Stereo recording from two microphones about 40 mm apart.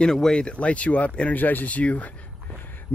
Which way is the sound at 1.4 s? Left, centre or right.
Left.